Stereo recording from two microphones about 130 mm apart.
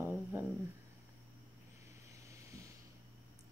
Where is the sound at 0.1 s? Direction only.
15° right (ahead or behind).